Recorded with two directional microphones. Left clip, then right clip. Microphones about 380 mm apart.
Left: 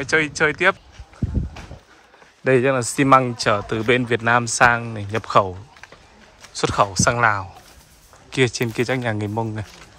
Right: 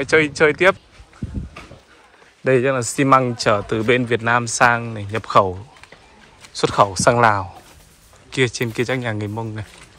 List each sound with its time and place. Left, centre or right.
0.0 s speech: centre
2.4 s speech: centre